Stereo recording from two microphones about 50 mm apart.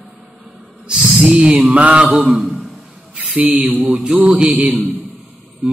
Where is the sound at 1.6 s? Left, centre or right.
Right.